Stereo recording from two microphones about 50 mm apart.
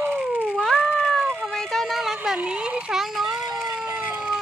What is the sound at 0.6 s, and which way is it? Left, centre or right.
Cat, centre.